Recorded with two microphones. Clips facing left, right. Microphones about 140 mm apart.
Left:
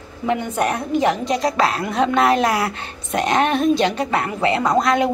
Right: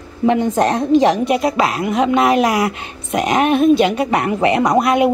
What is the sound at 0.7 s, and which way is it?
Speech, 20° right (ahead or behind).